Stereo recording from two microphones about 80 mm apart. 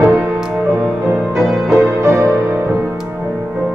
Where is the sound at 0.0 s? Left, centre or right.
Centre.